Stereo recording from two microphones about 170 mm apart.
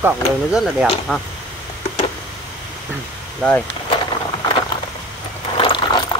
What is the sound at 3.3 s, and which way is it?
Speech, 10° left (ahead or behind).